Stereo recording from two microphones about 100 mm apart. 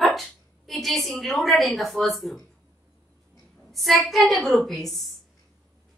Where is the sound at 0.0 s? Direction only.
Centre (ahead or behind).